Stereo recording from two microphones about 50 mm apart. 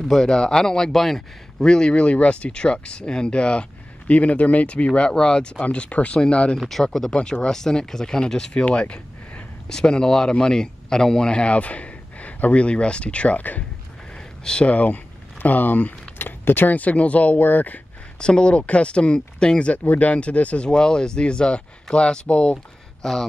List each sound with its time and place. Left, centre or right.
0.0 s speech: centre; by 6.6 s left
6.7 s speech: centre
8.6 s a sound: left
9.7 s speech: centre; by 13.7 s left
14.1 s a sound: centre
14.7 s speech: left
18.2 s speech: centre
23.0 s speech: centre